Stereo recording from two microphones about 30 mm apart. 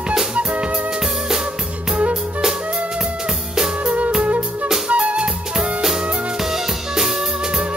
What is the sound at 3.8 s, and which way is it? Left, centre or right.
Music, right.